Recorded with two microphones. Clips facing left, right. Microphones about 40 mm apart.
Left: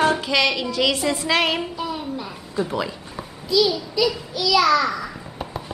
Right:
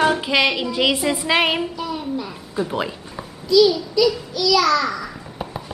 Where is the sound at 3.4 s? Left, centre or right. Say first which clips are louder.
Right 5 dB; centre.